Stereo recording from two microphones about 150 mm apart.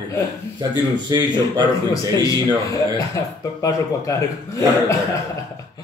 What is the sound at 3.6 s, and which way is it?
Speech, 20° left (ahead or behind).